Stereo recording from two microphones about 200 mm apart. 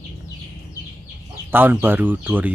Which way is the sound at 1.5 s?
10° right (ahead or behind).